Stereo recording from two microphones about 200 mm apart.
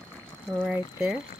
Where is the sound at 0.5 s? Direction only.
5° right (ahead or behind).